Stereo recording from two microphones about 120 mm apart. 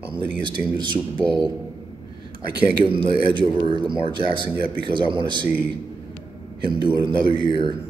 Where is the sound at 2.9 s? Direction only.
45° right (ahead or behind).